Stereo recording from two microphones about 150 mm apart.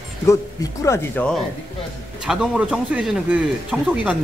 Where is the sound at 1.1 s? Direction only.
10° left (ahead or behind).